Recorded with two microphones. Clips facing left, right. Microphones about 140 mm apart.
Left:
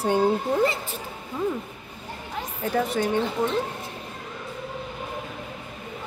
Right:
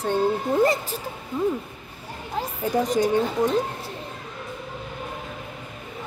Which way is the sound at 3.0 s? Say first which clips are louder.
Right 3 dB; 20° right (ahead or behind).